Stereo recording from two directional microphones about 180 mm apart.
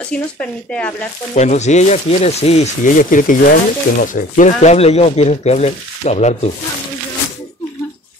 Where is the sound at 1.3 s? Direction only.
40° left (ahead or behind).